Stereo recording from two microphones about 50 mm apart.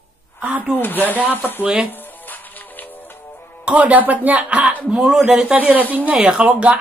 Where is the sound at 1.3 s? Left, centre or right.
Left.